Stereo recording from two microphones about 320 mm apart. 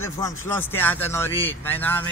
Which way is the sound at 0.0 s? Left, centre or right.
Centre.